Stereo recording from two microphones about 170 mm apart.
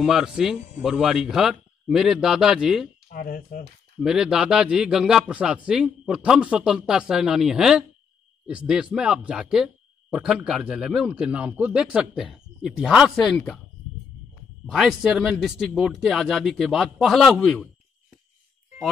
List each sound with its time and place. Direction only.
0.0 s a man's voice: 5° right (ahead or behind)
3.1 s speech: 60° left (ahead or behind)
4.0 s a man's voice: 5° right (ahead or behind)
14.7 s a man's voice: centre (ahead or behind)